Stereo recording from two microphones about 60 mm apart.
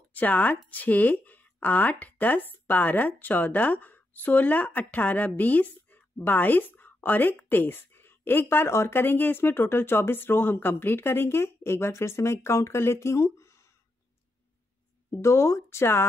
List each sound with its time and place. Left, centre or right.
0.1 s speech: left
15.0 s speech: left